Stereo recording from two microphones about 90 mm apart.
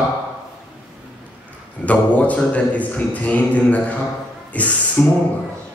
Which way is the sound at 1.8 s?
15° left (ahead or behind).